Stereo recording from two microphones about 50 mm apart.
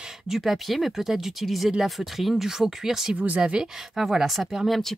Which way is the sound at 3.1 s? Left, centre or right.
Right.